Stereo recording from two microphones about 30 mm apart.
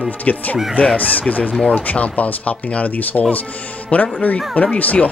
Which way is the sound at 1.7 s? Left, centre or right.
Left.